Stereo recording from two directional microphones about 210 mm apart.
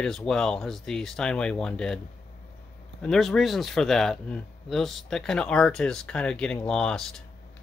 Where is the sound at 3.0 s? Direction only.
Centre (ahead or behind).